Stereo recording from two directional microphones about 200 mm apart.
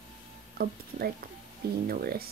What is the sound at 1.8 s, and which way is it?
Speech, 50° right (ahead or behind).